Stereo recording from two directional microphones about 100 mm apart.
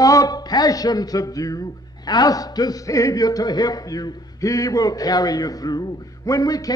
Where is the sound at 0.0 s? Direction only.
35° left (ahead or behind).